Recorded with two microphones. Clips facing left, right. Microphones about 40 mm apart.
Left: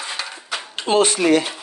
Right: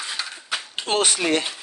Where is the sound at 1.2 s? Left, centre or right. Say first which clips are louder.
Left 6 dB; left.